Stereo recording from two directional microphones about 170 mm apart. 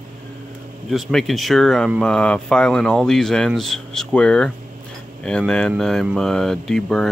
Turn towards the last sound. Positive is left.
turn(degrees=0)  # may be behind; listen again after turning